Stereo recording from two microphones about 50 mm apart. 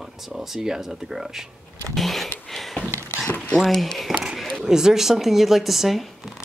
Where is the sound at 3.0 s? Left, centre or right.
Left.